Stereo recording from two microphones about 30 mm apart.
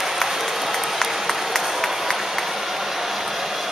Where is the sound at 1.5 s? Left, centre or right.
Centre.